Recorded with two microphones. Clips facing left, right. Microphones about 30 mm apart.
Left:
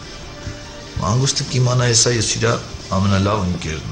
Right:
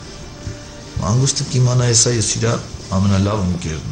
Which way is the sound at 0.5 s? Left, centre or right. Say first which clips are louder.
Left 1 dB; centre.